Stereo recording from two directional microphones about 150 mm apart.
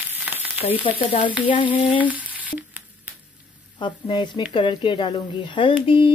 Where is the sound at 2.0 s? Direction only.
10° right (ahead or behind).